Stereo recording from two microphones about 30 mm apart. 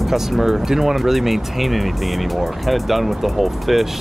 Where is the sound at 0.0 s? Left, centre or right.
Centre.